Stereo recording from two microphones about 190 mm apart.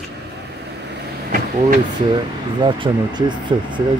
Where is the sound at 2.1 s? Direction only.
25° right (ahead or behind).